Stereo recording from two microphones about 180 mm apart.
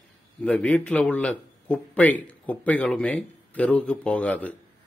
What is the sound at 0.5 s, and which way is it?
A man's voice, 5° left (ahead or behind).